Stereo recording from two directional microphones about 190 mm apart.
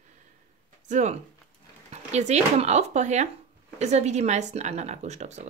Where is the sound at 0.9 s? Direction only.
40° right (ahead or behind).